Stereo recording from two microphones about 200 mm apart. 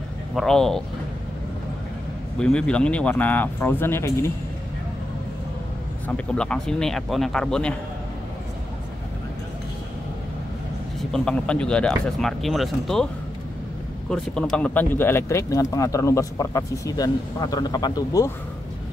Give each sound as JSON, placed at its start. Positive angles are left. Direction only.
{"t": 0.4, "sound": "speech", "side_deg": 0}
{"t": 2.3, "sound": "speech", "side_deg": 5}
{"t": 6.0, "sound": "speech", "side_deg": 5}
{"t": 11.0, "sound": "speech", "side_deg": 0}